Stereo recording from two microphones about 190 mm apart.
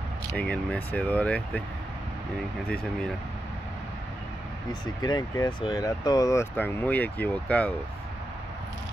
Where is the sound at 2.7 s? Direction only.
5° left (ahead or behind).